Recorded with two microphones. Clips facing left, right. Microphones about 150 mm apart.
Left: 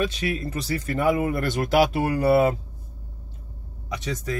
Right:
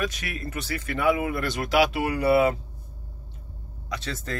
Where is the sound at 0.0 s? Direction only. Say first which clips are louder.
Left 5 dB; 30° left (ahead or behind); by 2.5 s 45° left (ahead or behind).